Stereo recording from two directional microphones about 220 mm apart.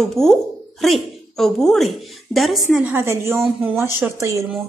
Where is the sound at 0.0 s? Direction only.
Centre (ahead or behind).